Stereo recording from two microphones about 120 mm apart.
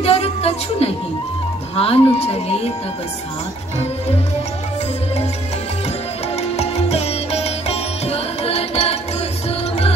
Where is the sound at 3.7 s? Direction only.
60° left (ahead or behind).